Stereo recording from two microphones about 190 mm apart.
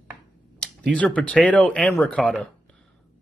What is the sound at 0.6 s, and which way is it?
Speech, 5° left (ahead or behind).